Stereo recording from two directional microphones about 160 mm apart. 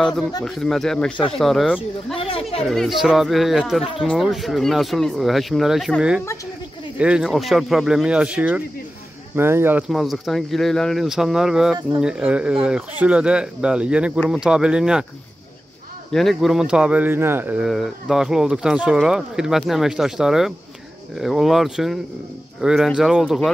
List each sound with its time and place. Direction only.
0.0 s speech: 5° left (ahead or behind)
2.1 s speech: 35° left (ahead or behind)
2.7 s speech: centre (ahead or behind)
9.8 s speech: centre (ahead or behind)
16.1 s speech: centre (ahead or behind)
17.6 s speech: centre (ahead or behind)